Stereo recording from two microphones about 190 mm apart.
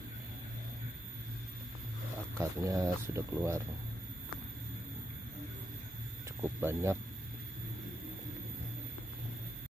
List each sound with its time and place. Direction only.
2.3 s speech: 15° right (ahead or behind)
6.6 s speech: 15° right (ahead or behind)